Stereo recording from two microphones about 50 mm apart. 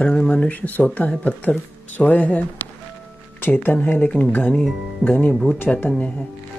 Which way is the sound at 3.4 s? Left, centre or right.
Left.